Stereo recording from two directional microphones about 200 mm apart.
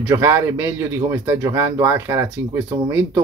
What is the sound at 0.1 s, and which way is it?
Speech, 10° right (ahead or behind).